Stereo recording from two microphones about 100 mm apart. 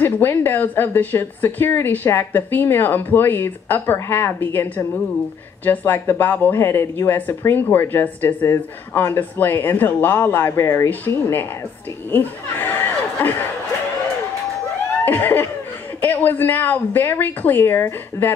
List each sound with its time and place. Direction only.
0.0 s speech: 20° left (ahead or behind)
15.0 s speech: 20° left (ahead or behind)